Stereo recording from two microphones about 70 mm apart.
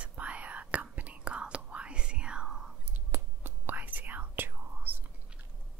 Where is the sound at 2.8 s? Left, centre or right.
Right.